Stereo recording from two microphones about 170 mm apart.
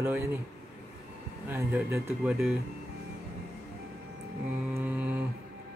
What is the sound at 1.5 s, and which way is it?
Speech, 10° right (ahead or behind).